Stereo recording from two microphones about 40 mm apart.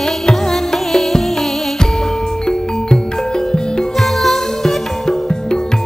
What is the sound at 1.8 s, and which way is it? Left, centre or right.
Music, centre.